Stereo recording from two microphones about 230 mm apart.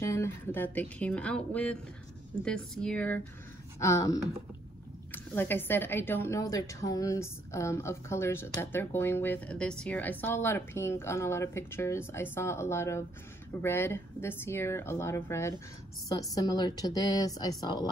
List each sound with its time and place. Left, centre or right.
0.0 s a woman's voice: centre